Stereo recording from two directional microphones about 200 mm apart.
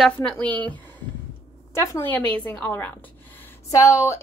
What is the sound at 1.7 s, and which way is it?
A woman's voice, 10° left (ahead or behind).